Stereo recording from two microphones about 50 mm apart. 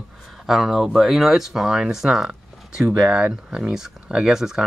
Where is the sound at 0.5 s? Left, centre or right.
Centre.